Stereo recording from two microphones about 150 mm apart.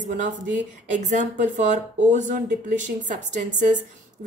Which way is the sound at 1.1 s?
55° right (ahead or behind).